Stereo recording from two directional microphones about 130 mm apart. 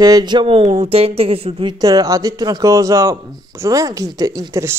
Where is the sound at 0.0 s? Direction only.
30° right (ahead or behind).